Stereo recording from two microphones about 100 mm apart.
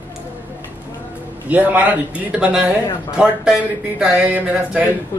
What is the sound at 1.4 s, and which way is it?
Speech, 15° right (ahead or behind).